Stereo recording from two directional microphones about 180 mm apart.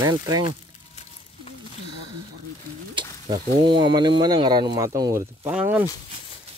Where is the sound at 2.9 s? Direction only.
25° right (ahead or behind).